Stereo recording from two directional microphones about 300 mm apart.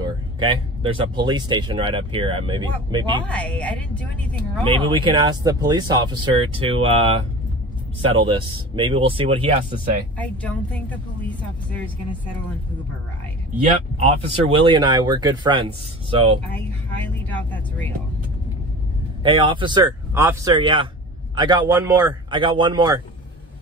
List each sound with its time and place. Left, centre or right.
0.0 s speech: centre
3.3 s speech: centre
4.6 s speech: centre
10.1 s speech: centre
13.9 s speech: centre
16.5 s speech: centre
19.2 s speech: centre